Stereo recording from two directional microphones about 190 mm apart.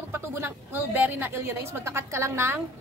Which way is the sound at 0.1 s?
15° right (ahead or behind).